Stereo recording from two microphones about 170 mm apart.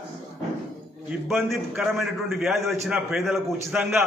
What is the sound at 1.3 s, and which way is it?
A man's voice, centre (ahead or behind).